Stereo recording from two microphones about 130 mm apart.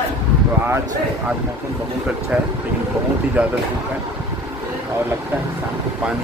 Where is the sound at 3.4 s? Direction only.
10° right (ahead or behind).